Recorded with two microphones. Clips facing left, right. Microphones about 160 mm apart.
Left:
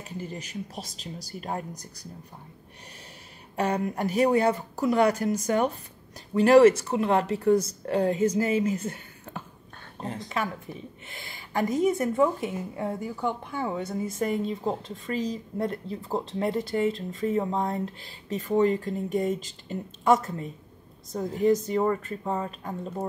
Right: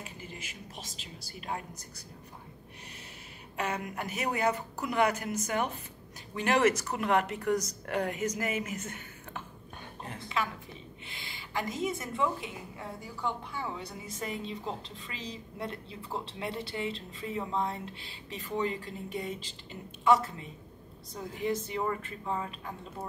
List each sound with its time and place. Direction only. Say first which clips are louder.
0.0 s speech: left 8 dB; 40° left (ahead or behind)
3.5 s a woman's voice: left 8 dB; 35° left (ahead or behind)